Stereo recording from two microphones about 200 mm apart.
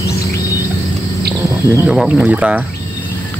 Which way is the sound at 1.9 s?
5° right (ahead or behind).